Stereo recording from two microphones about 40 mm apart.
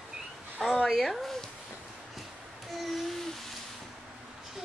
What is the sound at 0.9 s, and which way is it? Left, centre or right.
Speech, centre.